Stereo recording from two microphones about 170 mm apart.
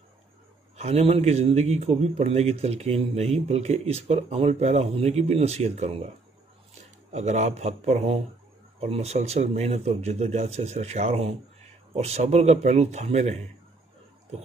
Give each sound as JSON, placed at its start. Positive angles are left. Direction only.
{"t": 0.7, "sound": "a man's voice", "side_deg": -40}
{"t": 7.1, "sound": "a man's voice", "side_deg": -40}